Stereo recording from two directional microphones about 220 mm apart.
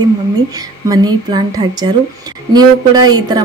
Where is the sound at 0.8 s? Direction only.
20° right (ahead or behind).